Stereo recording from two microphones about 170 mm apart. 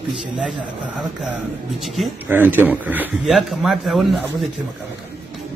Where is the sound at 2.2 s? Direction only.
10° right (ahead or behind).